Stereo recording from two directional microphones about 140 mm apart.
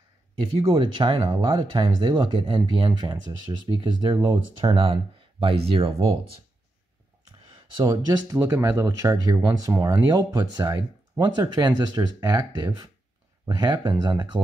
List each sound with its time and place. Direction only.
0.6 s speech: 40° right (ahead or behind)
7.4 s speech: 30° right (ahead or behind)